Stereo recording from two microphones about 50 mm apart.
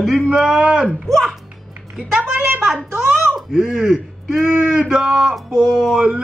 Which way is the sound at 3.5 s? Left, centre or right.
Centre.